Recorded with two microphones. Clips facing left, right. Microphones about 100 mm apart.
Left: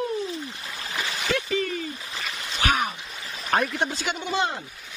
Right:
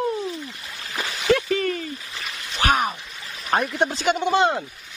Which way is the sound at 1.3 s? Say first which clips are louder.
Right 6 dB; 50° right (ahead or behind).